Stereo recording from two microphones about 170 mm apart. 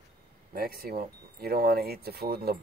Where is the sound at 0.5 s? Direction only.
60° right (ahead or behind).